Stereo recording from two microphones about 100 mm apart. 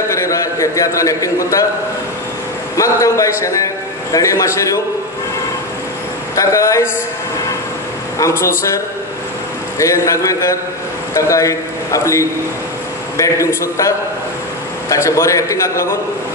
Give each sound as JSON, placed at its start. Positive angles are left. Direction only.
{"t": 0.1, "sound": "a man's voice", "side_deg": 30}
{"t": 2.8, "sound": "a man's voice", "side_deg": 30}
{"t": 6.3, "sound": "a man's voice", "side_deg": 30}
{"t": 8.2, "sound": "a man's voice", "side_deg": 30}